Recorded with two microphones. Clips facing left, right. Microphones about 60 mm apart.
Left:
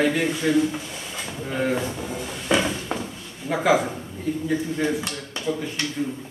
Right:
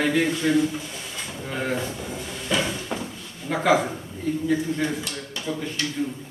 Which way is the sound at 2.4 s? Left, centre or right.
Left.